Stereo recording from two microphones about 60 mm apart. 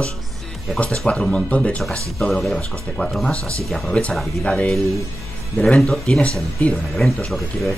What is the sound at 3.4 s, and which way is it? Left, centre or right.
Speech, right.